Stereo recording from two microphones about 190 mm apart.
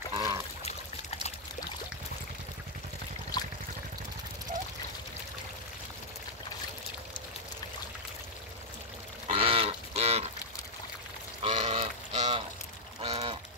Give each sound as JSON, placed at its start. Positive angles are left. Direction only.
{"t": 0.1, "sound": "pour", "side_deg": -20}
{"t": 0.7, "sound": "pour", "side_deg": 35}
{"t": 3.3, "sound": "trickle", "side_deg": 20}
{"t": 9.3, "sound": "livestock", "side_deg": -30}
{"t": 11.4, "sound": "duck", "side_deg": -35}
{"t": 13.0, "sound": "a sound", "side_deg": -30}